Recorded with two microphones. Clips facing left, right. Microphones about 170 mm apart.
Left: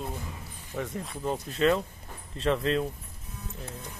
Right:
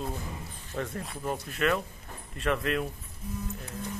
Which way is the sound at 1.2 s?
25° left (ahead or behind).